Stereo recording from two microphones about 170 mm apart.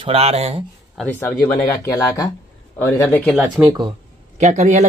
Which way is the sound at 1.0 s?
10° left (ahead or behind).